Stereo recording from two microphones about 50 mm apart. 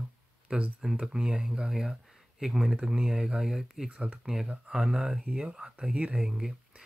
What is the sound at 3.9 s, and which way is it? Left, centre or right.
Speech, right.